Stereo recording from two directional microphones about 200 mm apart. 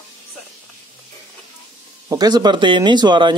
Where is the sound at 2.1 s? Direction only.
20° right (ahead or behind).